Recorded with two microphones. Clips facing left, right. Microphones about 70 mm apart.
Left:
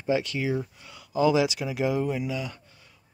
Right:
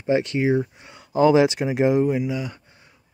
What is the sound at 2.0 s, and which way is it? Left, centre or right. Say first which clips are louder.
Speech: right 6 dB; centre.